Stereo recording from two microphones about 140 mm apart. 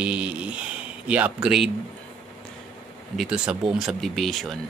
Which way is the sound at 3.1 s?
5° right (ahead or behind).